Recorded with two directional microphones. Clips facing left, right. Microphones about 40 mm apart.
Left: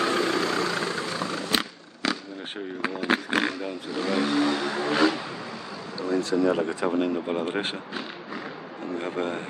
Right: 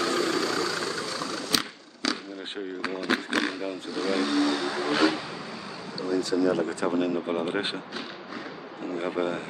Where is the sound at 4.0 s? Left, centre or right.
Left.